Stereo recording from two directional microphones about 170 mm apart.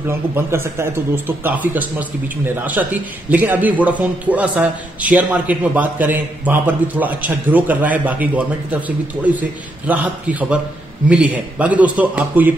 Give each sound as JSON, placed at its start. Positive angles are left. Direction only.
{"t": 0.5, "sound": "a man's voice", "side_deg": -15}